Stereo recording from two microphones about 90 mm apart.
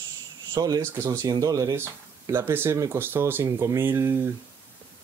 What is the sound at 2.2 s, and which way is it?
Speech, 30° right (ahead or behind).